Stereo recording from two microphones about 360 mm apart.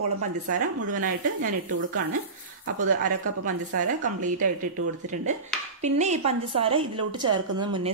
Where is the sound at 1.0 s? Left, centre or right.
Right.